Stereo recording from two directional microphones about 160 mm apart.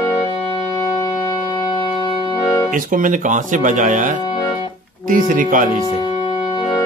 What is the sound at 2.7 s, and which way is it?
Speech, 55° right (ahead or behind).